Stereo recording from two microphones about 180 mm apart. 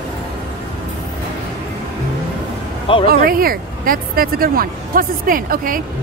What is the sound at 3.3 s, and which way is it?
A woman's voice, 55° right (ahead or behind).